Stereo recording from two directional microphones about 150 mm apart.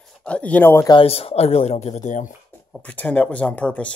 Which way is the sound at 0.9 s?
40° left (ahead or behind).